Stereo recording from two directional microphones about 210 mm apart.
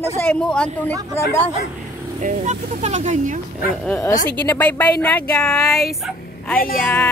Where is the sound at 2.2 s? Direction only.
35° right (ahead or behind).